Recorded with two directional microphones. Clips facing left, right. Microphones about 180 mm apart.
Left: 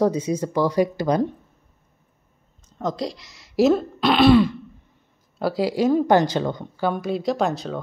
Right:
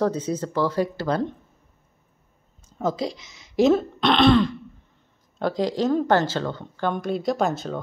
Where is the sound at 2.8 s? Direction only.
Centre (ahead or behind).